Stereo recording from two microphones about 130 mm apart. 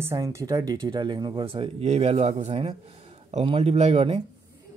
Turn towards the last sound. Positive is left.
turn(degrees=-50)  # may be behind; listen again after turning